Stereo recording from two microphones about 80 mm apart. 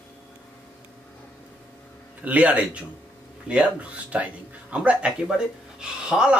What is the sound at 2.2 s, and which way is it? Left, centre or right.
Speech, centre.